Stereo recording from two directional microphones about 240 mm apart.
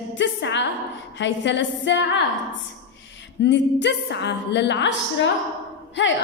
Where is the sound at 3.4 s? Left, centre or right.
Left.